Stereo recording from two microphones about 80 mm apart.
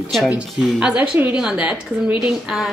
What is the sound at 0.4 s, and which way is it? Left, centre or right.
A woman's voice, centre.